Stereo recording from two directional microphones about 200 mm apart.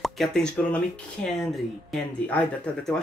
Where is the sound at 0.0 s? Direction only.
Centre (ahead or behind).